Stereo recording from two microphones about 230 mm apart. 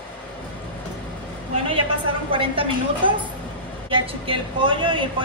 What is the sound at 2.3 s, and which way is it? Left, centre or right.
Speech, right.